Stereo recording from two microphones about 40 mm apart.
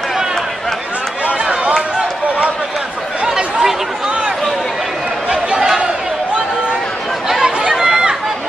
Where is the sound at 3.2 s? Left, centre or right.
Centre.